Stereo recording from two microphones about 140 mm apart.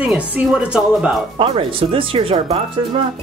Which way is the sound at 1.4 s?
40° right (ahead or behind).